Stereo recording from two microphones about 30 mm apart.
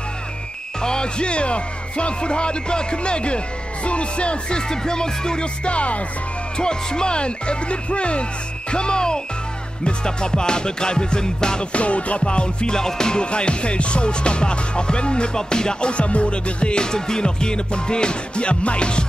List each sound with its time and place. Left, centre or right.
0.7 s speech: left
5.7 s music: left
6.6 s speech: left
9.8 s music: left
11.7 s speech: left
12.7 s music: left
13.2 s speech: left
15.9 s speech: left